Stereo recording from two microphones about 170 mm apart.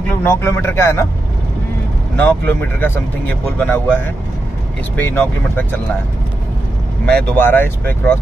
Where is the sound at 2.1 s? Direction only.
10° left (ahead or behind).